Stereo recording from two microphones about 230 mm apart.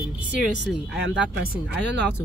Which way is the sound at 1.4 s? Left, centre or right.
Right.